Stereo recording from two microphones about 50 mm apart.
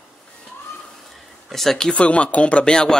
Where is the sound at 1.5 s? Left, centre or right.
Centre.